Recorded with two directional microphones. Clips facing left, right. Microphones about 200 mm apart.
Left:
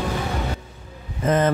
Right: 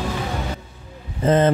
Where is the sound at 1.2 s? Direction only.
30° right (ahead or behind).